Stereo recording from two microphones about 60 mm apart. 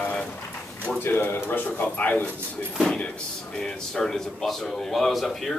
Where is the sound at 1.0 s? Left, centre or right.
Left.